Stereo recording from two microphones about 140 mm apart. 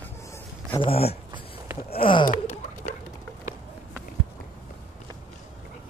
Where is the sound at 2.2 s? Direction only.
60° left (ahead or behind).